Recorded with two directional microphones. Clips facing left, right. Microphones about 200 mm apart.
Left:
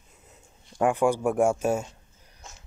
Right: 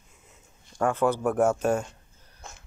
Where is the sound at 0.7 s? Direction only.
15° left (ahead or behind).